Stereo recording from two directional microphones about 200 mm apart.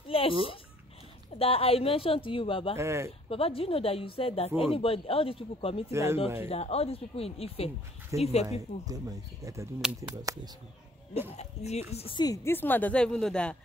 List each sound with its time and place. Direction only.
0.1 s speech: 25° left (ahead or behind)
1.4 s speech: 30° left (ahead or behind)
2.8 s speech: 15° right (ahead or behind)
3.3 s speech: 30° left (ahead or behind)
5.9 s speech: 15° right (ahead or behind)
6.5 s speech: 30° left (ahead or behind)
8.8 s speech: 20° right (ahead or behind)
11.3 s speech: 35° left (ahead or behind); by 13.6 s 5° left (ahead or behind)